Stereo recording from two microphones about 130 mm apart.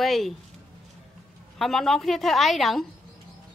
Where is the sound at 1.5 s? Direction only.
Centre (ahead or behind).